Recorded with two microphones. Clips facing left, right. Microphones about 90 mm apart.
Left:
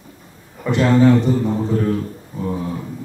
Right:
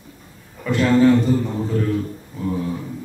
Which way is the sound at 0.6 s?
20° left (ahead or behind).